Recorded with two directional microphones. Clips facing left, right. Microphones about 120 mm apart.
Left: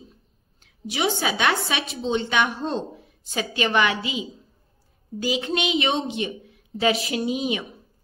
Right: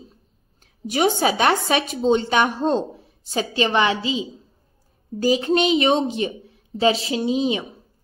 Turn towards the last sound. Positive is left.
turn(degrees=-25)  # may be behind; listen again after turning